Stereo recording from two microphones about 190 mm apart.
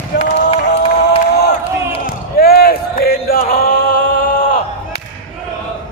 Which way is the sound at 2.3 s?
55° left (ahead or behind).